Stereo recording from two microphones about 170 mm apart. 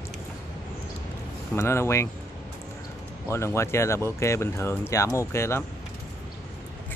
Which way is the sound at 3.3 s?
15° left (ahead or behind).